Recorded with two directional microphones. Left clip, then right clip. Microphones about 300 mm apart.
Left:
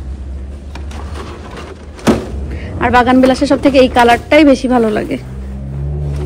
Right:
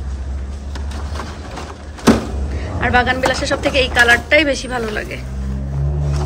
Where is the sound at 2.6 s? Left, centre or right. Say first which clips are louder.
Left 5 dB; left.